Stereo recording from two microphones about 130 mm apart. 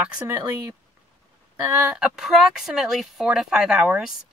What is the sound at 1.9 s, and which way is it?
Speech, 5° right (ahead or behind).